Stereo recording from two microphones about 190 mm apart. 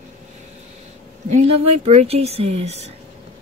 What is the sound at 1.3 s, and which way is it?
A woman's voice, 35° right (ahead or behind).